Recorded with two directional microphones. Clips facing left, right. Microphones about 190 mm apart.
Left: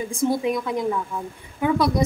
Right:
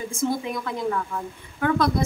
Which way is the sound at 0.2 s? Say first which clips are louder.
Left 4 dB; 15° left (ahead or behind).